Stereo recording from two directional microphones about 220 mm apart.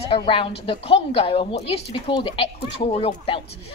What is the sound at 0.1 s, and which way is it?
Speech, 20° left (ahead or behind).